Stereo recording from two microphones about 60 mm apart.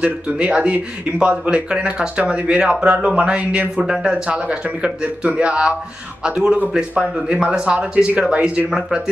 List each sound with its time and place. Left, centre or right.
0.0 s speech: centre